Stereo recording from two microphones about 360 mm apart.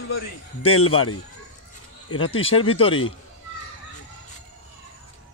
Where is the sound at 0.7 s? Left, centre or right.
Left.